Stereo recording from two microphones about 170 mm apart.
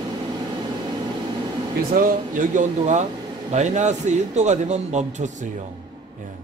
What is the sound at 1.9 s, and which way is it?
Speech, 55° right (ahead or behind).